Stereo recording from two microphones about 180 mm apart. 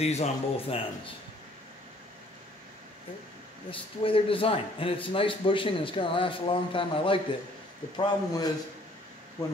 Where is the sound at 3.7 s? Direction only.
30° left (ahead or behind).